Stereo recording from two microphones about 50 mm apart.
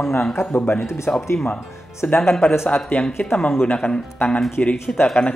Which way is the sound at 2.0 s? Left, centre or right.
Left.